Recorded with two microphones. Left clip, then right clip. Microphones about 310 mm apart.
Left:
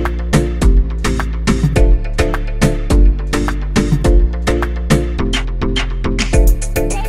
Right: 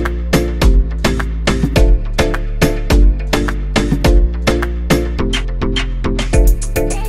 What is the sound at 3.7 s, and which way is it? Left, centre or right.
Music, centre.